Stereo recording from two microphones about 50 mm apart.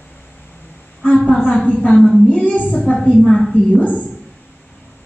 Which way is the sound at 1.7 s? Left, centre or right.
Left.